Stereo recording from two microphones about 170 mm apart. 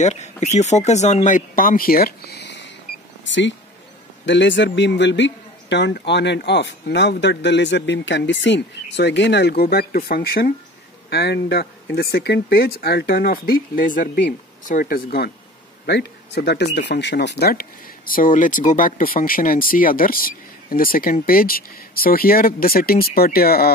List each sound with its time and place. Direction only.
0.0 s a man's voice: 40° left (ahead or behind); by 15.3 s 65° left (ahead or behind)
15.9 s speech: 80° left; by 23.7 s 65° left (ahead or behind)